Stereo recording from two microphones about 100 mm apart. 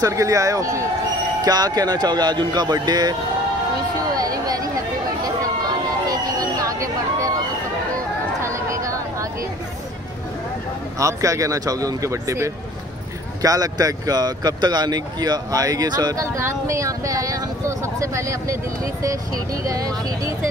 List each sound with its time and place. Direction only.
0.0 s speech: 30° right (ahead or behind)
4.2 s chatter: 40° right (ahead or behind)
5.7 s a sound: 40° right (ahead or behind)
8.4 s a sound: 30° right (ahead or behind)
11.0 s speech: 30° right (ahead or behind)
16.3 s speech: 30° right (ahead or behind)